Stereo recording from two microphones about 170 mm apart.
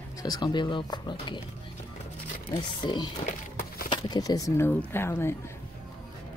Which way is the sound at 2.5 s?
25° left (ahead or behind).